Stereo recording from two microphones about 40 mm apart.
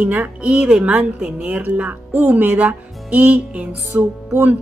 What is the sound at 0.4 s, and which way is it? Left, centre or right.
Speech, right.